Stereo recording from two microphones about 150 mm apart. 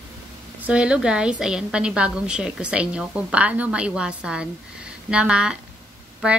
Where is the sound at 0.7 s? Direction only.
5° right (ahead or behind).